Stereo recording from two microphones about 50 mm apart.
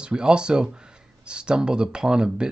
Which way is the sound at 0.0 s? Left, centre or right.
Centre.